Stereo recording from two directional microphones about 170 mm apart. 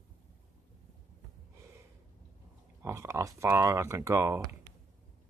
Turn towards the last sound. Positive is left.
turn(degrees=-15)  # may be behind; listen again after turning